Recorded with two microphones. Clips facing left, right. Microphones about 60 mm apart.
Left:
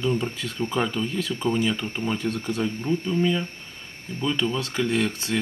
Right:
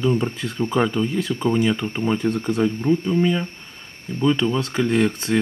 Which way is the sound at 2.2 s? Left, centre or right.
Right.